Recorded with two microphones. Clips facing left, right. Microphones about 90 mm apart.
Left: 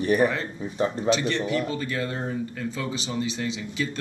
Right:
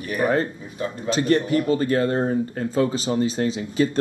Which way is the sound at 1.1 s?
45° right (ahead or behind).